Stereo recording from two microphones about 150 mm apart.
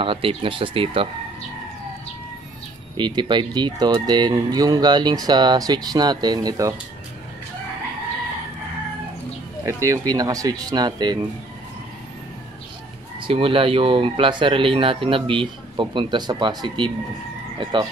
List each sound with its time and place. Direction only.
0.0 s speech: 35° right (ahead or behind)
3.0 s speech: 30° right (ahead or behind)
9.7 s speech: 20° right (ahead or behind)
13.2 s speech: 35° right (ahead or behind)